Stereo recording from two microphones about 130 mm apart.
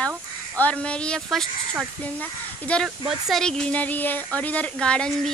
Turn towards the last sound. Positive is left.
turn(degrees=5)  # may be behind; listen again after turning